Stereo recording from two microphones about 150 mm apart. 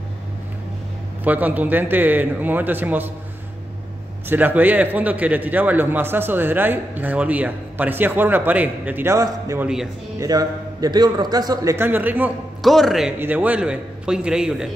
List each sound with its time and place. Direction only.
1.2 s a man's voice: 10° right (ahead or behind)
4.3 s a man's voice: 10° right (ahead or behind)
12.6 s a man's voice: centre (ahead or behind)